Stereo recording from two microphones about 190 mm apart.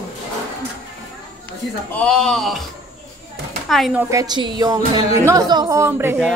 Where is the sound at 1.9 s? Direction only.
5° left (ahead or behind).